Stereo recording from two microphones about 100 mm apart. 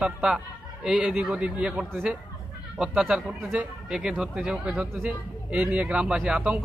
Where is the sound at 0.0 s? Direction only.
5° right (ahead or behind).